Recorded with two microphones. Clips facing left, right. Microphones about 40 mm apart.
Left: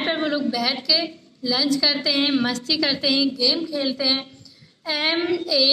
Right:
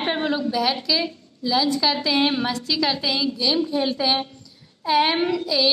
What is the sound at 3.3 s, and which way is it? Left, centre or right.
A woman's voice, centre.